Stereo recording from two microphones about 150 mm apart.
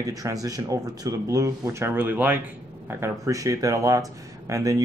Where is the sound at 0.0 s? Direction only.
25° right (ahead or behind).